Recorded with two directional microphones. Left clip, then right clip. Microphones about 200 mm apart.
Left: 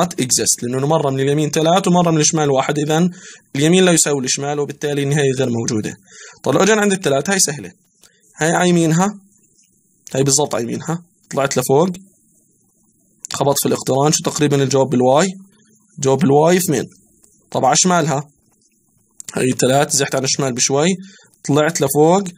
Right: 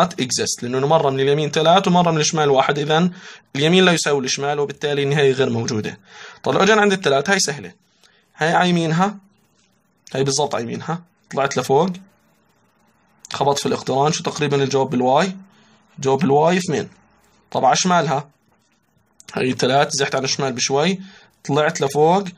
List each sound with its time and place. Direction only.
0.0 s speech: 35° left (ahead or behind)
13.2 s speech: 40° left (ahead or behind)